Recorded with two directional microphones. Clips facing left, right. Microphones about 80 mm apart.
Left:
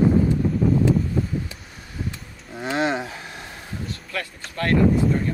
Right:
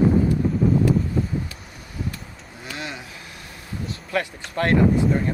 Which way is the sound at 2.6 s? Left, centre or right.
Left.